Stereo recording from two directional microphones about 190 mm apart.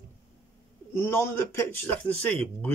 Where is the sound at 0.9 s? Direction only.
15° left (ahead or behind).